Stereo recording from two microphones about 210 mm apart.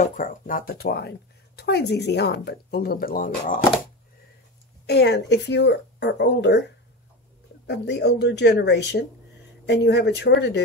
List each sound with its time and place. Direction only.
0.0 s speech: 40° left (ahead or behind)
4.8 s speech: 50° left (ahead or behind)
7.6 s speech: 55° left (ahead or behind)